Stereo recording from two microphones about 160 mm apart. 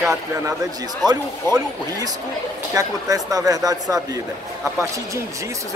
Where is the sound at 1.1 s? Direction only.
25° right (ahead or behind).